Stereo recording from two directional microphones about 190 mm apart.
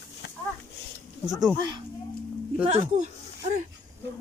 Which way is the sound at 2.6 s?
35° right (ahead or behind).